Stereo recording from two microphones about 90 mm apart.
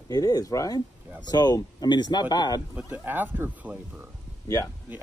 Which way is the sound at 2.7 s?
20° right (ahead or behind).